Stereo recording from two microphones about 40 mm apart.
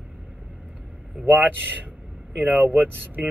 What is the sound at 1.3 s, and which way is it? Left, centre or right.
Speech, right.